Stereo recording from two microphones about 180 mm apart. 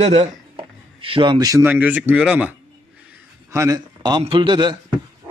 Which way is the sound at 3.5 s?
15° right (ahead or behind).